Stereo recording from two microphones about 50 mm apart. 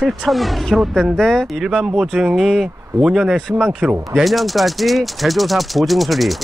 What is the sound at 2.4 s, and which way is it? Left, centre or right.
Speech, centre.